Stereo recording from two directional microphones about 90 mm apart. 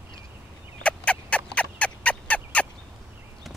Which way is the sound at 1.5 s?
15° left (ahead or behind).